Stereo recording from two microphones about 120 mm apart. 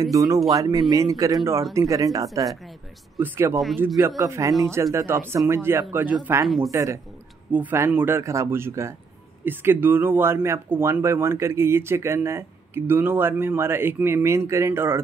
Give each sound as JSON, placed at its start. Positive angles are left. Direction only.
{"t": 0.0, "sound": "speech", "side_deg": -30}
{"t": 6.4, "sound": "speech", "side_deg": 0}
{"t": 6.7, "sound": "speech", "side_deg": -25}